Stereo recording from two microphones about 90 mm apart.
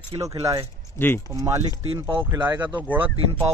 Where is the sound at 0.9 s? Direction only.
25° left (ahead or behind).